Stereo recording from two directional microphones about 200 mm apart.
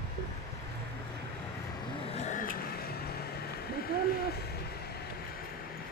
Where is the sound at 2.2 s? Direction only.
40° left (ahead or behind).